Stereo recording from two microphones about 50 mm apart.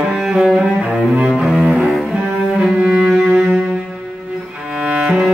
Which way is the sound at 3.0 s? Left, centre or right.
Centre.